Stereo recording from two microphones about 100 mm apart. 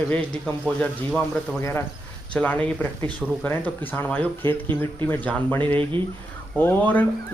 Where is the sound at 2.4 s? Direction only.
15° left (ahead or behind).